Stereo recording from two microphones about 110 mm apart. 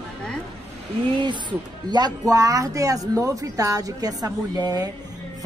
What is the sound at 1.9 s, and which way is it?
Speech, 40° right (ahead or behind).